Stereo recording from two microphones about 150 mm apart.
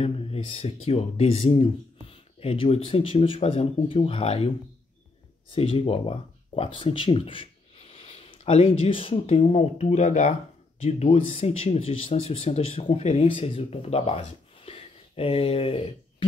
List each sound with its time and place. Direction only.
0.0 s speech: 40° left (ahead or behind)
5.5 s speech: 40° left (ahead or behind)